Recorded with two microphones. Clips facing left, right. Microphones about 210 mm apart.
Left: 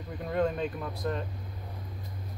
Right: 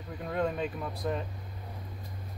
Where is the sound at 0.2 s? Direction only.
Centre (ahead or behind).